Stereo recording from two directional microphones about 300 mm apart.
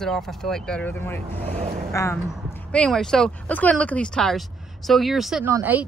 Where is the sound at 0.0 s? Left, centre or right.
Centre.